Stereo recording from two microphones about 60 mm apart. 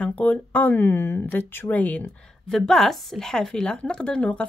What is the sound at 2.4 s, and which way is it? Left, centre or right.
Speech, centre.